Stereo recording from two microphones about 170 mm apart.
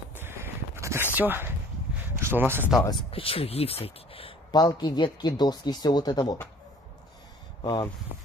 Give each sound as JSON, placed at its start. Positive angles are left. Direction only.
{"t": 0.1, "sound": "walk", "side_deg": -15}
{"t": 2.0, "sound": "a sound", "side_deg": -15}
{"t": 2.8, "sound": "speech", "side_deg": 25}
{"t": 7.6, "sound": "speech", "side_deg": 25}